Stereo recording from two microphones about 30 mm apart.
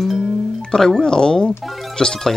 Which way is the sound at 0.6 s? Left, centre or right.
Left.